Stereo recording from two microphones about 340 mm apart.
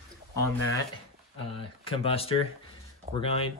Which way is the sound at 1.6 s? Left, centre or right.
Centre.